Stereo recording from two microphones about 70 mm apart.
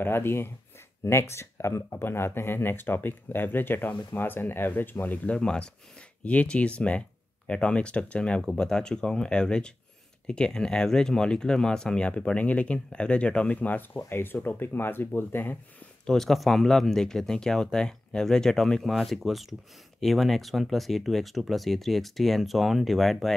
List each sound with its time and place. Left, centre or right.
0.0 s speech: left
16.1 s speech: centre